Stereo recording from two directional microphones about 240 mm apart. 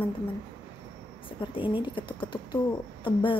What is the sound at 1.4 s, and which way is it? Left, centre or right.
A woman's voice, left.